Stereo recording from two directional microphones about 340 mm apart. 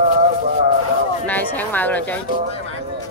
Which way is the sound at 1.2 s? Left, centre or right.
Centre.